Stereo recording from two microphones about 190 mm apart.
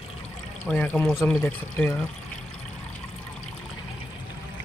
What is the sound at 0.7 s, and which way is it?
Speech, 5° left (ahead or behind).